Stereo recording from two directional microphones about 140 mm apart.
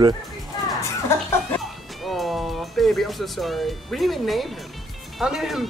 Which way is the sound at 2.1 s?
Centre (ahead or behind).